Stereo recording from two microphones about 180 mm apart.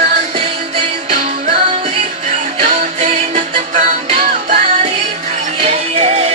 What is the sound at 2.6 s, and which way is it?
Music, 40° right (ahead or behind).